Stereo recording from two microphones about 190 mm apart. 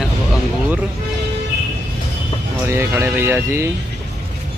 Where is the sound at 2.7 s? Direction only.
15° right (ahead or behind).